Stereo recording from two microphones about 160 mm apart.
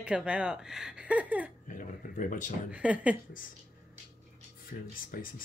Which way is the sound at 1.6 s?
55° left (ahead or behind).